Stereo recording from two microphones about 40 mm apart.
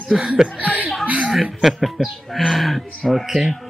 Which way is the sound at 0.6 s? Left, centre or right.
Right.